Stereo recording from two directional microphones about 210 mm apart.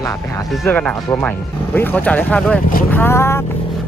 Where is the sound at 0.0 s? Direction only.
15° left (ahead or behind).